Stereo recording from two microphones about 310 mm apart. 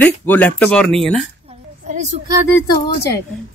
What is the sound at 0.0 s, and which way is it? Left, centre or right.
Speech, centre.